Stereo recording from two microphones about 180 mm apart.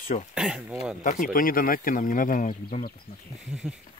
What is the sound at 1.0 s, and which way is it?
Speech, 50° left (ahead or behind).